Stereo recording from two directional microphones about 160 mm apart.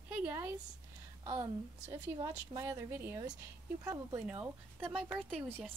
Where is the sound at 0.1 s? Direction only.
10° right (ahead or behind).